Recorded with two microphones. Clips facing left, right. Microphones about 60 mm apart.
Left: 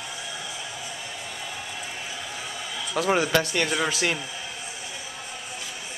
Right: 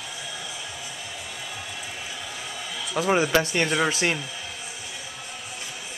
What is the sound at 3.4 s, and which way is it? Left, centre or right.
Speech, right.